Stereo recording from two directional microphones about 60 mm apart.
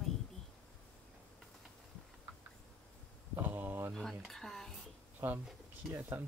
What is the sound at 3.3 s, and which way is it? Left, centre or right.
Speech, right.